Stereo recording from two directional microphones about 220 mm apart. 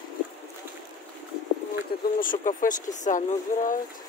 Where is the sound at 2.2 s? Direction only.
35° left (ahead or behind).